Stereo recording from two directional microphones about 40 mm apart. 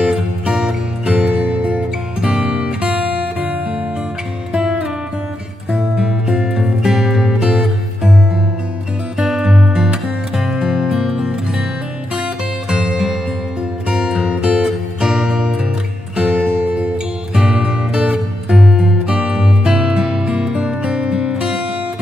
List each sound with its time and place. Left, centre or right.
0.0 s music: centre
1.1 s music: right
4.6 s music: centre
9.2 s music: centre
14.6 s music: centre
16.3 s music: right
17.4 s music: right